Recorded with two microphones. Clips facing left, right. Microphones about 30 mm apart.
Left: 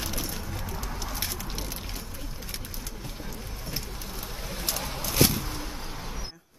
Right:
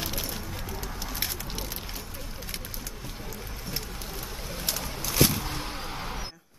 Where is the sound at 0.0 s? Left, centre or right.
Centre.